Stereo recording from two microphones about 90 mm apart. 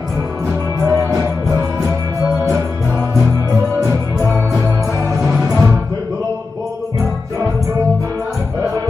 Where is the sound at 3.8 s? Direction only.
35° right (ahead or behind).